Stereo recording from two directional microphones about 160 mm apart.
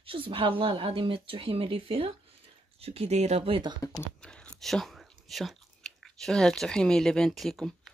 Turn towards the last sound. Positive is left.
turn(degrees=0)  # may be behind; listen again after turning